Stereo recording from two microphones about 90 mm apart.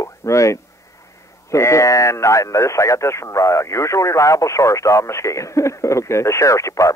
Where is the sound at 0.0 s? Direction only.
35° left (ahead or behind).